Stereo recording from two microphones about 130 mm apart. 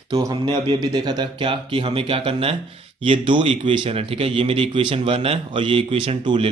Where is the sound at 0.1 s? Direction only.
30° right (ahead or behind).